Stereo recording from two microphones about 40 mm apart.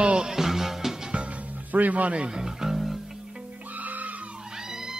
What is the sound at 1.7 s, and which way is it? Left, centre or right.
Speech, right.